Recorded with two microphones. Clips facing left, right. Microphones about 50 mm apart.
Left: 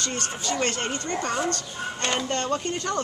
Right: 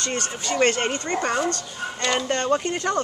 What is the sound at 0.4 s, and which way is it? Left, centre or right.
Speech, right.